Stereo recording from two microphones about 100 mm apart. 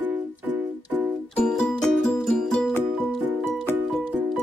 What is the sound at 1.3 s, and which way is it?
Music, 5° left (ahead or behind).